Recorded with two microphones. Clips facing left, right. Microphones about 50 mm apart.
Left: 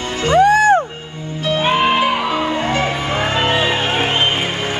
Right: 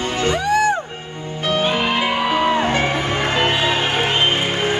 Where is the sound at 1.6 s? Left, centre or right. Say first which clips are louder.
Left 6 dB; left.